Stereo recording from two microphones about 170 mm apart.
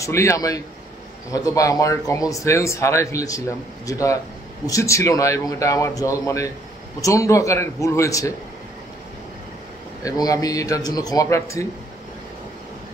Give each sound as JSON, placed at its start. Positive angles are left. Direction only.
{"t": 0.0, "sound": "a man's voice", "side_deg": 15}
{"t": 10.0, "sound": "speech", "side_deg": 20}